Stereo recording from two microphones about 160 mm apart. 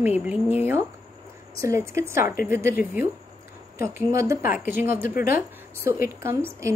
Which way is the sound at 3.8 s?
20° right (ahead or behind).